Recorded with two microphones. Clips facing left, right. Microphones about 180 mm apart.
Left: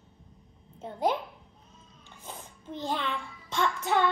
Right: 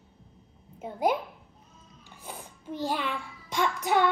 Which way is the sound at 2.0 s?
10° right (ahead or behind).